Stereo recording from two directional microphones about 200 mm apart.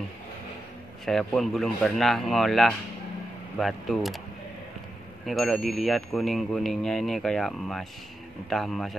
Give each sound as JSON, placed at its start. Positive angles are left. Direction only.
{"t": 1.0, "sound": "speech", "side_deg": 0}
{"t": 5.2, "sound": "speech", "side_deg": 0}